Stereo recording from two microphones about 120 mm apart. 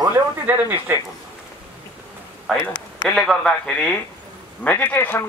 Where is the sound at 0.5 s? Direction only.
20° right (ahead or behind).